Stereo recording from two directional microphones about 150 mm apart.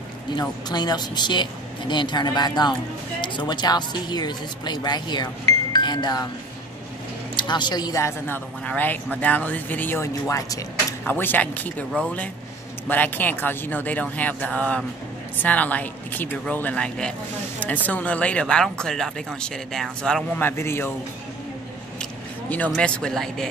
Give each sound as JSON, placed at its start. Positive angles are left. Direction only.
{"t": 0.4, "sound": "speech", "side_deg": 25}
{"t": 7.3, "sound": "speech", "side_deg": 30}
{"t": 22.7, "sound": "speech", "side_deg": 5}